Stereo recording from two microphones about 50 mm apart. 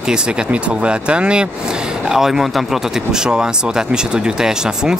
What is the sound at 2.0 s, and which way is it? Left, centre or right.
Speech, centre.